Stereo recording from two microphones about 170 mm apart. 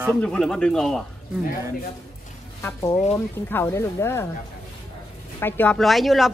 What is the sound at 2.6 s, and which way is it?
Speech, 15° left (ahead or behind).